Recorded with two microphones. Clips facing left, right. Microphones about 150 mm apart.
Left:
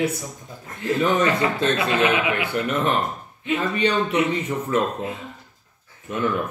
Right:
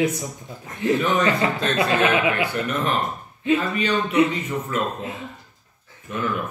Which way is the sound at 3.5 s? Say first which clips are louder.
Even; 30° left (ahead or behind).